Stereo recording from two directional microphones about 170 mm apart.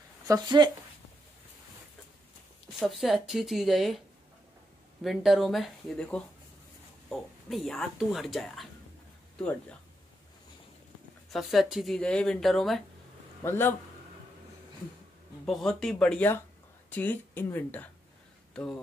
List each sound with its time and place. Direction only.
0.3 s speech: 25° right (ahead or behind)
2.8 s speech: centre (ahead or behind)
5.0 s speech: centre (ahead or behind)
11.3 s speech: centre (ahead or behind)
13.4 s a man's voice: 15° left (ahead or behind)
15.4 s speech: centre (ahead or behind)